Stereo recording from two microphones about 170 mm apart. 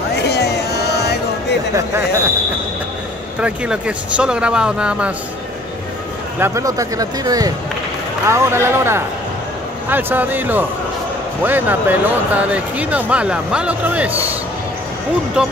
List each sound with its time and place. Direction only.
0.1 s a sound: 75° left (ahead or behind)
3.3 s speech: 5° right (ahead or behind)
6.4 s speech: 20° right (ahead or behind)
15.4 s speech: 5° right (ahead or behind)